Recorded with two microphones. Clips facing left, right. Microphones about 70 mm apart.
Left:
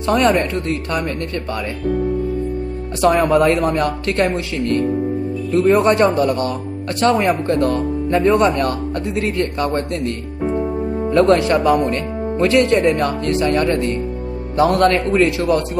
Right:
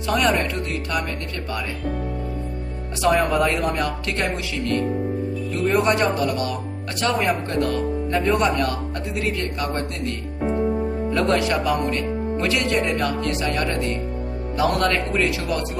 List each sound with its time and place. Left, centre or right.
0.0 s speech: left
3.0 s speech: left
11.1 s speech: left